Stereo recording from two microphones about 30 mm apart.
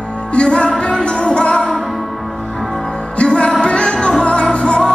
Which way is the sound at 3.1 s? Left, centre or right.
Left.